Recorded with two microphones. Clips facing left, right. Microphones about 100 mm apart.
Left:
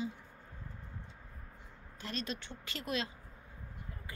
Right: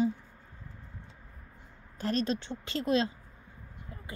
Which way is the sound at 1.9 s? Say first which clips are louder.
Right 10 dB; 40° right (ahead or behind).